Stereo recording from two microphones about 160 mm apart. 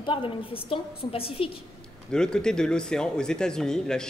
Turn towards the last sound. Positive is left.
turn(degrees=5)  # may be behind; listen again after turning